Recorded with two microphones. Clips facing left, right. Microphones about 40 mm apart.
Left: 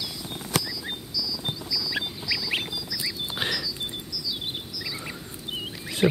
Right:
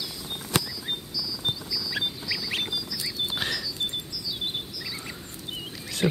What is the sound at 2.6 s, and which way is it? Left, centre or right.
Bird, centre.